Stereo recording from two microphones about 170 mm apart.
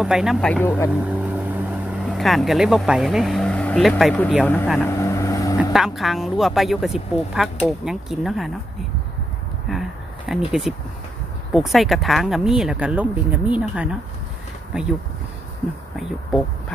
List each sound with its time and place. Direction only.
0.0 s speech: centre (ahead or behind)
0.8 s speech: 10° right (ahead or behind); by 4.3 s 10° left (ahead or behind)
4.8 s vehicle: 15° left (ahead or behind)
5.6 s speech: centre (ahead or behind)
9.7 s a sound: centre (ahead or behind)
11.5 s speech: centre (ahead or behind)
16.0 s speech: 5° left (ahead or behind)